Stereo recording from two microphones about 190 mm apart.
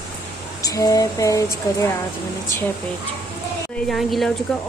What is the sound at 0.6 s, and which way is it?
Speech, 20° left (ahead or behind).